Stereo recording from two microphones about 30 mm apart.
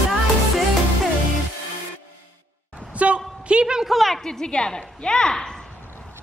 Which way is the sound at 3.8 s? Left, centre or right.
Centre.